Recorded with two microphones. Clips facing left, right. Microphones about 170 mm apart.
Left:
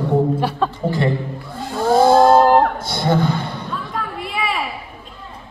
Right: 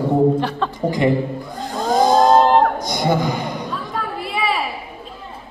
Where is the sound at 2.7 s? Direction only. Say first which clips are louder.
Even; 15° right (ahead or behind).